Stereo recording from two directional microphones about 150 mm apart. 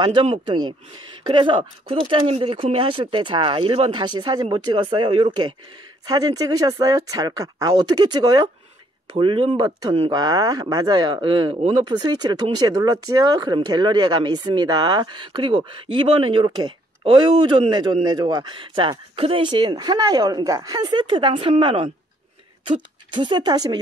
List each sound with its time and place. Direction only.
0.0 s speech: 30° right (ahead or behind)